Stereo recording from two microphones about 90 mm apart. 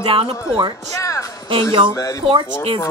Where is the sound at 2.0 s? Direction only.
40° left (ahead or behind).